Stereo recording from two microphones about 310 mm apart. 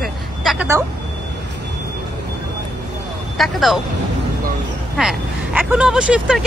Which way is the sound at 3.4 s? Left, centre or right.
Centre.